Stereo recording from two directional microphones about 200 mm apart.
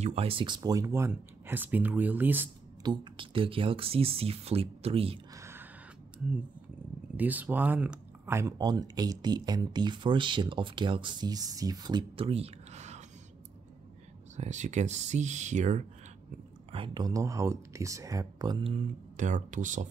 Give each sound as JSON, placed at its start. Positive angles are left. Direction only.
{"t": 0.0, "sound": "speech", "side_deg": -30}
{"t": 2.8, "sound": "speech", "side_deg": -20}
{"t": 5.3, "sound": "a sound", "side_deg": -15}
{"t": 7.2, "sound": "speech", "side_deg": -10}
{"t": 14.3, "sound": "speech", "side_deg": -35}
{"t": 16.7, "sound": "speech", "side_deg": -25}